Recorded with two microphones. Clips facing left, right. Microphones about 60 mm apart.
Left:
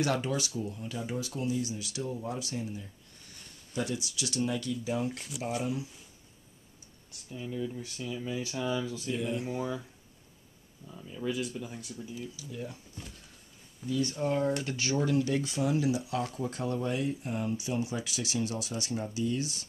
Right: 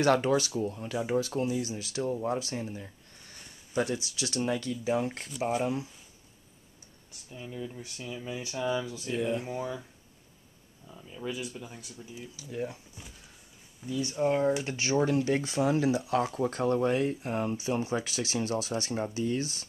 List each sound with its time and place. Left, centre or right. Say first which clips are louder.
0.0 s speech: right 6 dB; right
1.5 s speech: right 1 dB; right
5.1 s speech: even; centre
7.2 s speech: left 3 dB; centre; by 9.6 s right
9.6 s speech: left 1 dB; centre
10.9 s speech: left 2 dB; centre
12.4 s speech: right 5 dB; right
13.0 s speech: left 2 dB; centre
14.6 s speech: right 3 dB; right